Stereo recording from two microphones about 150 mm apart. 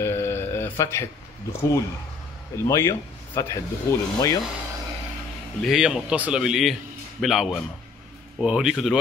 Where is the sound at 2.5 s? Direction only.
20° left (ahead or behind).